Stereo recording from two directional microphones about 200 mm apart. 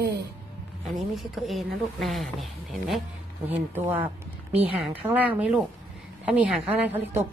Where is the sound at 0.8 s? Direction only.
Centre (ahead or behind).